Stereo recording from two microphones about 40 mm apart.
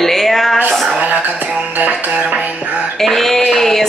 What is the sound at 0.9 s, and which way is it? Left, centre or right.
Speech, right.